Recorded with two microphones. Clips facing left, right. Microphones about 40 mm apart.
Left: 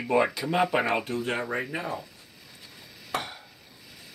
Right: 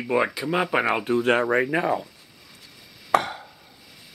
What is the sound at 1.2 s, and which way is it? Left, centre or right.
Speech, right.